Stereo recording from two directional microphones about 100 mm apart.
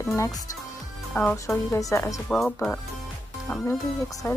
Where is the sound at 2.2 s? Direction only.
5° left (ahead or behind).